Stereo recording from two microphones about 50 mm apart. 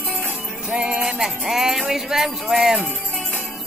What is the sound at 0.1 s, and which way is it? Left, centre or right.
Music, right.